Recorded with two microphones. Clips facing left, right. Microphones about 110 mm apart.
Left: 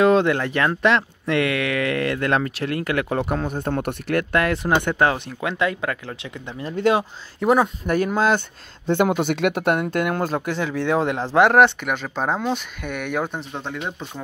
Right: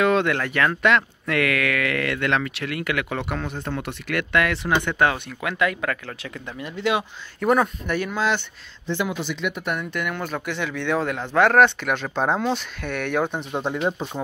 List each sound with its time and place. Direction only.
0.0 s speech: 30° left (ahead or behind)
6.6 s speech: 35° left (ahead or behind)
7.4 s speech: 15° left (ahead or behind)
7.8 s speech: 40° left (ahead or behind)
8.8 s speech: 55° left (ahead or behind)
9.9 s speech: 35° left (ahead or behind); by 11.7 s 20° left (ahead or behind)
11.8 s speech: 5° left (ahead or behind)
13.7 s speech: 30° right (ahead or behind)